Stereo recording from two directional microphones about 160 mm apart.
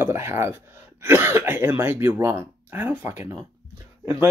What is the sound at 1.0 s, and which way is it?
Speech, 15° right (ahead or behind).